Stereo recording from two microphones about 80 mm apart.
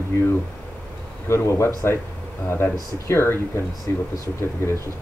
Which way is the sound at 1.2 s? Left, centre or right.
Left.